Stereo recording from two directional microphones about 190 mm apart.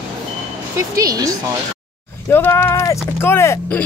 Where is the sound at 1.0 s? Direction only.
20° right (ahead or behind).